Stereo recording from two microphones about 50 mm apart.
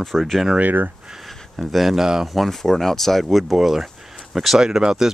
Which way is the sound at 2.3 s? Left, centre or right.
Centre.